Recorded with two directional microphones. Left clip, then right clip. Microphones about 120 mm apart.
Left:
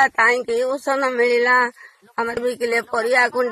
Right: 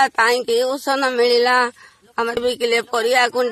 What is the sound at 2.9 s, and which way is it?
Speech, 30° right (ahead or behind).